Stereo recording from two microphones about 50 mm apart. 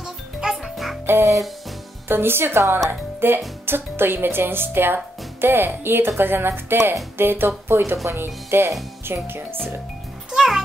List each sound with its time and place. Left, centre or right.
0.0 s music: centre
1.0 s music: right
2.0 s speech: right
10.3 s music: centre